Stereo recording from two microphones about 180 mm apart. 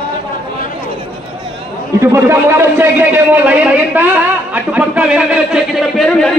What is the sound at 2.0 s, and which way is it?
A man's voice, 15° right (ahead or behind).